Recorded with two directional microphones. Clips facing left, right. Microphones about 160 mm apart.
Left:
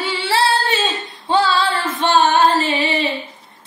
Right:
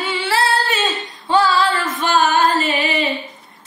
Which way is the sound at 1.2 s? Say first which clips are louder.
Right 1 dB; 30° left (ahead or behind).